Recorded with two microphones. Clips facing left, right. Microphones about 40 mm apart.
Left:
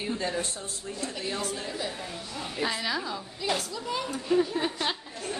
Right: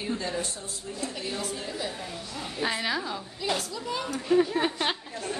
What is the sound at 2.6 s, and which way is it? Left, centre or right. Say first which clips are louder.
Speech: right 1 dB; centre.